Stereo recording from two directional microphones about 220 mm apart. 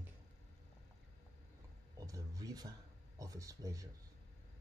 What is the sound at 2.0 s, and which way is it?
A man's voice, 15° right (ahead or behind).